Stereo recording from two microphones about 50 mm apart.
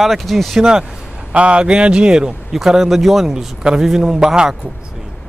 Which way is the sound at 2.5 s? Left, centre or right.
Centre.